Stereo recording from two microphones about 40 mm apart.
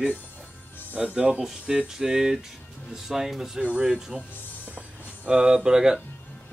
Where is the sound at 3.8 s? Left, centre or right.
Centre.